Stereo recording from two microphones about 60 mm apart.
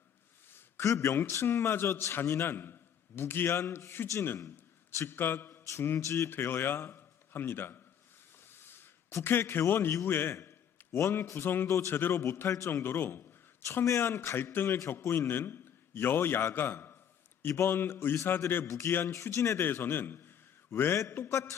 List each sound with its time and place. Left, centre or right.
0.7 s a man's voice: left
5.7 s a man's voice: left
6.3 s a man's voice: left
8.5 s a sound: left
9.2 s a man's voice: left
10.9 s a man's voice: left
11.2 s a man's voice: left
18.1 s a man's voice: left
21.1 s mantra: left